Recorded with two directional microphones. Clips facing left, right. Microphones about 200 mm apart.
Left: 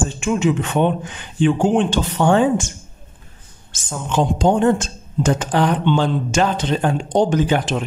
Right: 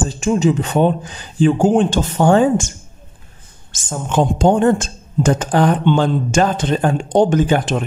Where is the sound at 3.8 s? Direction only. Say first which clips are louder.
Right 2 dB; 50° right (ahead or behind).